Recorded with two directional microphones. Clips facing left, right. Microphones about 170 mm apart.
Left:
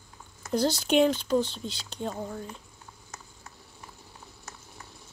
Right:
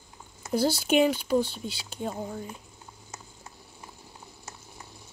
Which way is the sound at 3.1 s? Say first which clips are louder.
Right 2 dB; 15° right (ahead or behind).